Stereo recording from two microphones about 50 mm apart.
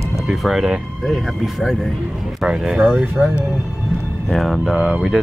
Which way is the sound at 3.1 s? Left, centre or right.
Right.